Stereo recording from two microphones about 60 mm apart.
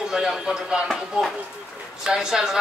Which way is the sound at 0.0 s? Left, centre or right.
Centre.